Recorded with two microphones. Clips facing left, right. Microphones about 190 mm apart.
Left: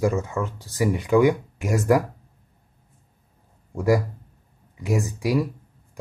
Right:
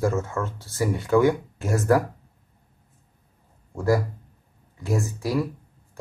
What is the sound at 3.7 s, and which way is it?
A man's voice, 15° left (ahead or behind).